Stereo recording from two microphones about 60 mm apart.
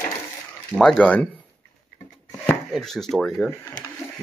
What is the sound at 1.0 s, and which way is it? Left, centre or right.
Speech, left.